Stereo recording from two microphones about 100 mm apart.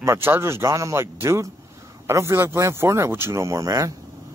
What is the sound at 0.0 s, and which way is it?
Speech, 25° right (ahead or behind).